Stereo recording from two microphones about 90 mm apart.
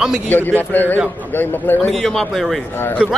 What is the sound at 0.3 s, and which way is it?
Speech, 20° left (ahead or behind).